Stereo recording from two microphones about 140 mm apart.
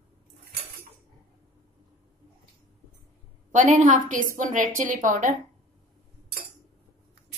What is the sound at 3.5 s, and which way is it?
A woman's voice, 60° right (ahead or behind).